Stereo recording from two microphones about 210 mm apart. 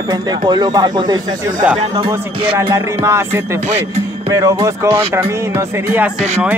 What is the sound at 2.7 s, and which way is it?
Speech, 15° right (ahead or behind).